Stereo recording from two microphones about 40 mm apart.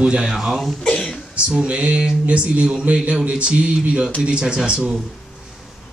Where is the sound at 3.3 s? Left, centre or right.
Right.